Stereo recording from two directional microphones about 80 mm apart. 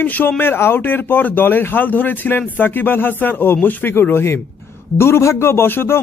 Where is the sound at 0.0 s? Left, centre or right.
Left.